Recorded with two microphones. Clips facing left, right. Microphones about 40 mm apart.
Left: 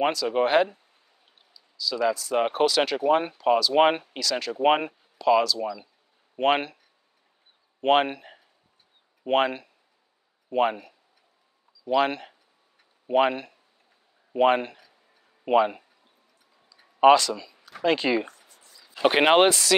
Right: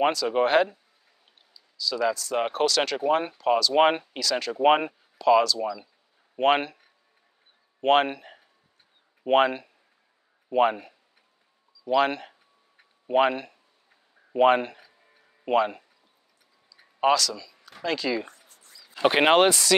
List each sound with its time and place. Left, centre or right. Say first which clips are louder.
0.0 s speech: right 1 dB; centre
7.8 s speech: even; centre
17.0 s speech: left 6 dB; left
18.9 s speech: left 1 dB; centre